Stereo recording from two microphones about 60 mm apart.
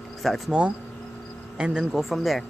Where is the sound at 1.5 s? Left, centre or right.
Centre.